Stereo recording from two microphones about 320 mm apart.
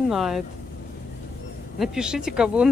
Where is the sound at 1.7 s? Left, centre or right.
Centre.